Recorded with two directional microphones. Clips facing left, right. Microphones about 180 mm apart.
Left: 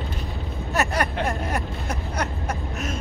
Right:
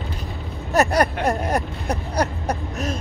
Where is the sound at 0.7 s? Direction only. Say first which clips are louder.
Right 6 dB; 40° right (ahead or behind).